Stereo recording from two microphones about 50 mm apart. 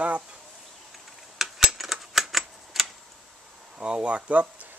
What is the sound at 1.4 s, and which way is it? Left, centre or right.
Typewriter, centre.